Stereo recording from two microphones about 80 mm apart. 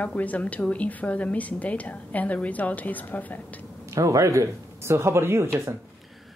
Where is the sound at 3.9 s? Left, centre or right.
Right.